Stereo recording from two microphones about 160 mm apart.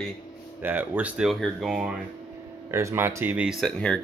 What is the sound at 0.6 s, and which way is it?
Speech, 10° right (ahead or behind).